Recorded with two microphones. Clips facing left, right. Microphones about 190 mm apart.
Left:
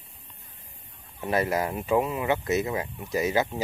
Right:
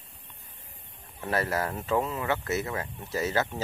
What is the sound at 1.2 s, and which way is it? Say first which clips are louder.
Speech: left 3 dB; 15° left (ahead or behind).